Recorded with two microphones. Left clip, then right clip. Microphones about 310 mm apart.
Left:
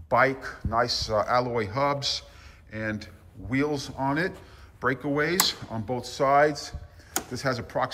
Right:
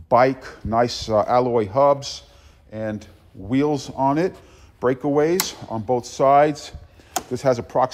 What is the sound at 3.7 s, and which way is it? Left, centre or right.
Speech, right.